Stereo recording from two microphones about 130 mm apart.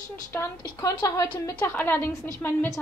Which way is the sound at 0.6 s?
30° left (ahead or behind).